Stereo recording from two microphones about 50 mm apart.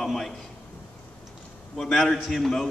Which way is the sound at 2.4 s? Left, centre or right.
Centre.